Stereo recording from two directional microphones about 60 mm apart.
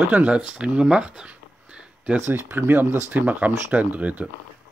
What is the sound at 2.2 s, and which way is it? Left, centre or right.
Speech, right.